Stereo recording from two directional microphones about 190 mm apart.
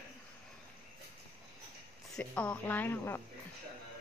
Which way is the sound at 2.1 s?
5° left (ahead or behind).